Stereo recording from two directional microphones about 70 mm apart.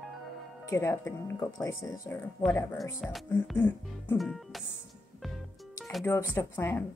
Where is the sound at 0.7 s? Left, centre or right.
Left.